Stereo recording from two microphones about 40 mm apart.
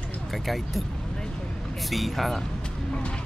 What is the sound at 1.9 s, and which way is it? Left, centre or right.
Speech, centre.